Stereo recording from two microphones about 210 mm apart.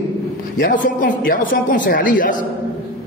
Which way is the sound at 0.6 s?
40° left (ahead or behind).